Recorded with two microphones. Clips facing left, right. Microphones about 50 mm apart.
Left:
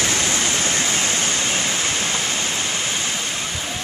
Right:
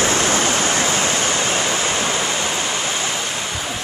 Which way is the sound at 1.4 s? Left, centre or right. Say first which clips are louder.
Right 3 dB; centre.